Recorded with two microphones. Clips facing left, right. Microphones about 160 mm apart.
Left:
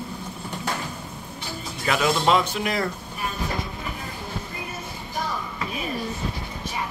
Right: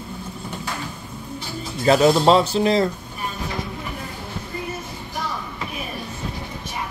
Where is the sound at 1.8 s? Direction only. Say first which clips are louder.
Right 8 dB; 35° right (ahead or behind).